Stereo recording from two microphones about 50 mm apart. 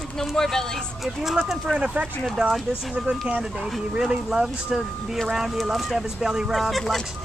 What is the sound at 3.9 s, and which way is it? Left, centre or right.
Speech, centre.